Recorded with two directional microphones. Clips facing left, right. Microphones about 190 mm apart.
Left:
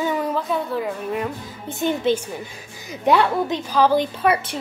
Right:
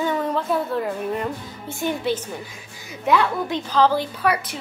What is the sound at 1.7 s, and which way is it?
Speech, 20° left (ahead or behind).